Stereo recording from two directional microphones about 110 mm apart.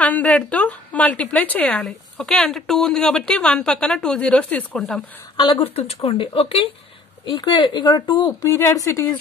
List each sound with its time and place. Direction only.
0.0 s a woman's voice: 10° left (ahead or behind)
5.4 s speech: 50° left (ahead or behind)
6.0 s speech: 60° left (ahead or behind)
7.2 s speech: 45° left (ahead or behind)
8.4 s a woman's voice: 25° left (ahead or behind)